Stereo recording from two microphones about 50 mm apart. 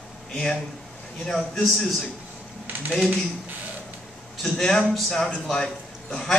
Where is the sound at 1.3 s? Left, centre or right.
Centre.